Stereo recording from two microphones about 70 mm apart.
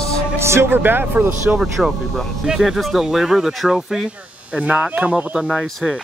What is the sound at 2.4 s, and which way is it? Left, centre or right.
Speech, centre.